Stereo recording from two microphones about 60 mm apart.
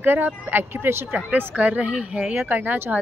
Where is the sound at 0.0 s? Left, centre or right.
Right.